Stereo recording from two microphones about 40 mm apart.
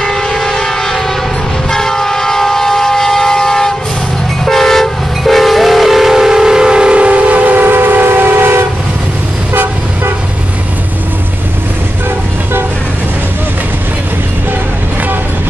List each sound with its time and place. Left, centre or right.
0.0 s train: centre; by 8.6 s right
9.5 s toot: right